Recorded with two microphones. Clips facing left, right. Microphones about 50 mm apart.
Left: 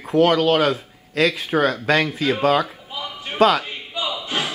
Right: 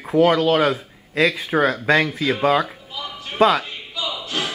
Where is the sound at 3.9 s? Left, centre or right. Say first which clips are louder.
Left 1 dB; left.